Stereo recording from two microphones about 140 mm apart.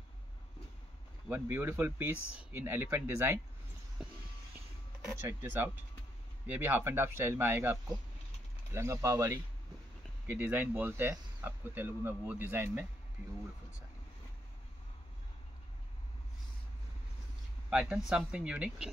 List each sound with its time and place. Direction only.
1.3 s speech: 15° right (ahead or behind)
4.0 s vehicle: 5° right (ahead or behind)
5.2 s speech: 15° right (ahead or behind)
17.6 s speech: 5° right (ahead or behind)